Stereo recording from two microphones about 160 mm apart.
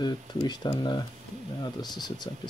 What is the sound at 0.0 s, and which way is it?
Speech, 25° left (ahead or behind).